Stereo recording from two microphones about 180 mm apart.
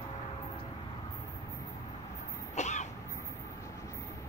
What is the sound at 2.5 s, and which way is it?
Cough, 40° left (ahead or behind).